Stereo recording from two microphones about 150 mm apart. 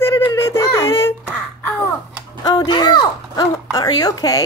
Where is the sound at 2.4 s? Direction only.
30° left (ahead or behind).